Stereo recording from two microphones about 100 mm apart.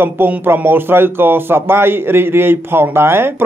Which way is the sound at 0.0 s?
20° right (ahead or behind).